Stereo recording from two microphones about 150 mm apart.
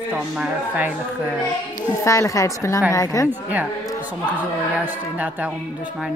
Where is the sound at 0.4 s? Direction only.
10° right (ahead or behind).